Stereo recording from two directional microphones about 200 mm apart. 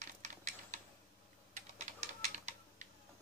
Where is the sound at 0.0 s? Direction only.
35° right (ahead or behind).